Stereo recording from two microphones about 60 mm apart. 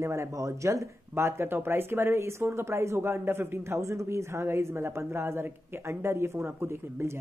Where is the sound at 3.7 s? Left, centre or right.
Right.